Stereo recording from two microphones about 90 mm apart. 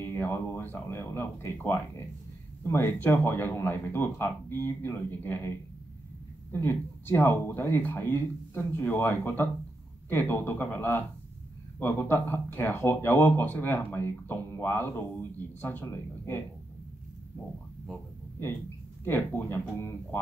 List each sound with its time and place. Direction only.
0.0 s speech: 25° left (ahead or behind)
6.5 s speech: 25° left (ahead or behind)
19.0 s speech: 20° left (ahead or behind)